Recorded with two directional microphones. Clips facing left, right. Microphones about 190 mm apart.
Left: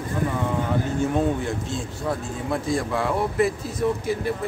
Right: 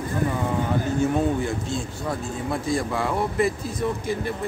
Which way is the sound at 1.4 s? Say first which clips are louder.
Right 1 dB; centre (ahead or behind).